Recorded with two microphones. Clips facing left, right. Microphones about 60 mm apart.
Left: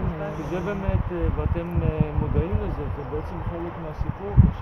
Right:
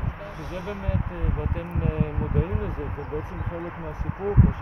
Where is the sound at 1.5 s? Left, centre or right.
Centre.